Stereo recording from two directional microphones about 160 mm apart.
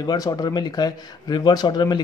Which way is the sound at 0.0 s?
25° left (ahead or behind).